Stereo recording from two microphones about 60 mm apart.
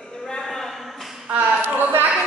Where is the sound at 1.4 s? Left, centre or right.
Right.